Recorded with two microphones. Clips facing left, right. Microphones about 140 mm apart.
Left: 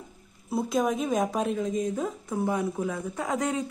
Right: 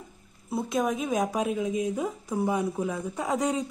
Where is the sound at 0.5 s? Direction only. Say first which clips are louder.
Left 1 dB; centre (ahead or behind).